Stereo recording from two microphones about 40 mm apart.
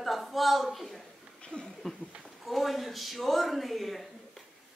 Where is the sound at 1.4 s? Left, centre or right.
Left.